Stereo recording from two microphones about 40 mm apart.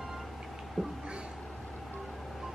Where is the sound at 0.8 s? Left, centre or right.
Centre.